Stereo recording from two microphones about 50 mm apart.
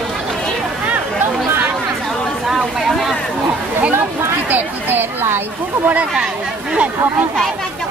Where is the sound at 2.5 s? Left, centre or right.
Centre.